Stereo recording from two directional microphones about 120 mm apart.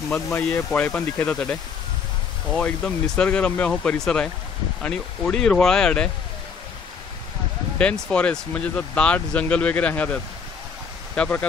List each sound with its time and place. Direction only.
0.3 s speech: 20° left (ahead or behind)
7.8 s speech: 10° left (ahead or behind)